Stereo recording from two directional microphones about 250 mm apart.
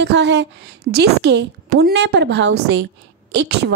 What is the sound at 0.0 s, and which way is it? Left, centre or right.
A woman's voice, right.